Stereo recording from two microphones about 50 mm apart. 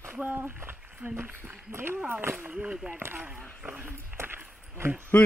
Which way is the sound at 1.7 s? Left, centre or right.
Right.